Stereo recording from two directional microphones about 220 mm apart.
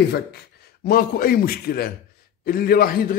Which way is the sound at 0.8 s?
40° left (ahead or behind).